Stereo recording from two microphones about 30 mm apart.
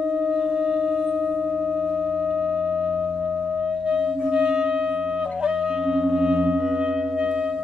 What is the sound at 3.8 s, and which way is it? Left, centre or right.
Clarinet, right.